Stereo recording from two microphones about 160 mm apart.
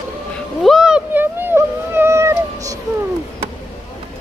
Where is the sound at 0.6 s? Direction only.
Centre (ahead or behind); by 2.7 s 20° right (ahead or behind).